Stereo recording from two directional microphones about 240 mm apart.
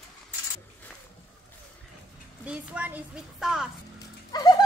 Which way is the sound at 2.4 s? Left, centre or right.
Centre.